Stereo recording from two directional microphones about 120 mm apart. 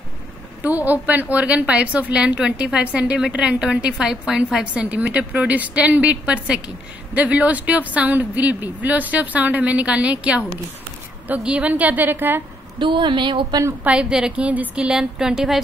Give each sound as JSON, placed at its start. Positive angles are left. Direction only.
{"t": 0.6, "sound": "a woman's voice", "side_deg": -15}
{"t": 12.7, "sound": "speech", "side_deg": -45}
{"t": 13.8, "sound": "a woman's voice", "side_deg": -5}